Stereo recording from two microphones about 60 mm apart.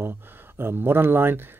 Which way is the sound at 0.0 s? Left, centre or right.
Right.